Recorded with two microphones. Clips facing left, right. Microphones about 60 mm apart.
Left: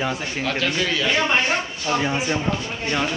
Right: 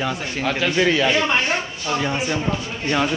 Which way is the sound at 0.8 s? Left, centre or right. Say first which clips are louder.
Right 6 dB; right.